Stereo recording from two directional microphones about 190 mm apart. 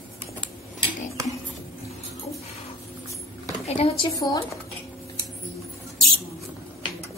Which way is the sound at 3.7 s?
35° left (ahead or behind).